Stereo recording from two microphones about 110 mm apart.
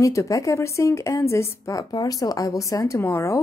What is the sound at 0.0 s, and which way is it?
A woman's voice, 30° left (ahead or behind).